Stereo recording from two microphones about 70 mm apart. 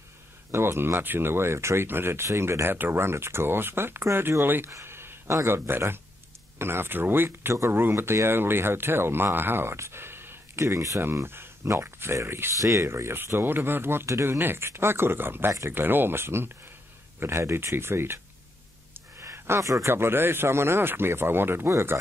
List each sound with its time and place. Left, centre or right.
0.5 s speech: right
14.4 s speech: right
19.3 s a sound: right
19.6 s speech: right
19.9 s speech: right